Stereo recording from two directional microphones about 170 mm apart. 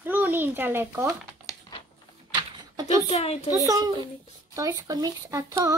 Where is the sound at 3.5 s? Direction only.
20° right (ahead or behind).